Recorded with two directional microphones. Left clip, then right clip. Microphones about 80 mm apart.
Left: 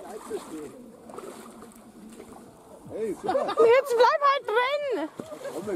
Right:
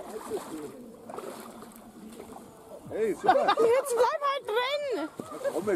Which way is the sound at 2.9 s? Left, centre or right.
Centre.